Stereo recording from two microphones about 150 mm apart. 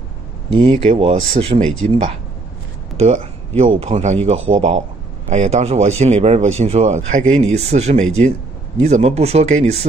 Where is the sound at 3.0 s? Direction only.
45° right (ahead or behind).